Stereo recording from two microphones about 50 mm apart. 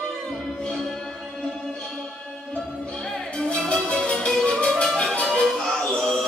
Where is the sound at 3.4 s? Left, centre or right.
Centre.